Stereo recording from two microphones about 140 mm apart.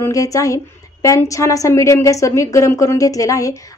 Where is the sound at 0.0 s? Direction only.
25° left (ahead or behind).